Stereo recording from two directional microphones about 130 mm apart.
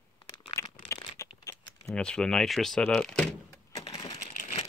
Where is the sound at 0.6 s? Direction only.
25° left (ahead or behind).